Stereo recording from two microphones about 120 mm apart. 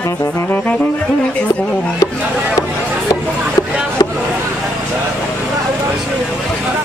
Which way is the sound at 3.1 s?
30° left (ahead or behind).